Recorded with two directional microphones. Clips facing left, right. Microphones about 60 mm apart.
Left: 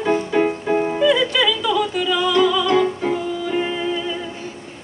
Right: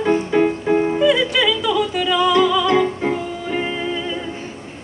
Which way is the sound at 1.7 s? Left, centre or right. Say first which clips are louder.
Right 1 dB; centre.